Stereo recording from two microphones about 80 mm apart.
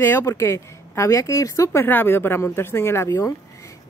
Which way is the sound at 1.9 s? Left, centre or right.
Left.